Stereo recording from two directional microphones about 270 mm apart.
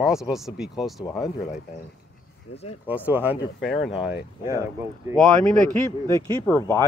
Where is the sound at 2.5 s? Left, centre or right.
Left.